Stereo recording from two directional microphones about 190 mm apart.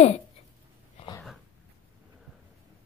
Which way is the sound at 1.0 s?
30° left (ahead or behind).